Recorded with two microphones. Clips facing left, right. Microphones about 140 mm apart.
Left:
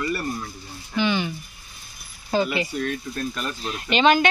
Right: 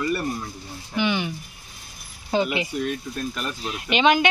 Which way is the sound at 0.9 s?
15° right (ahead or behind).